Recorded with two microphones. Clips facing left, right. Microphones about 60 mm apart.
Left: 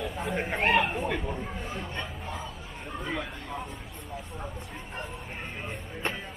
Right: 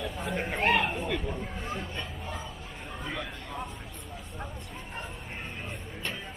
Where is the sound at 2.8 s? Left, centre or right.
Centre.